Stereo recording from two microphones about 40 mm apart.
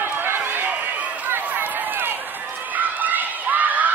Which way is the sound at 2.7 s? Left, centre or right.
Right.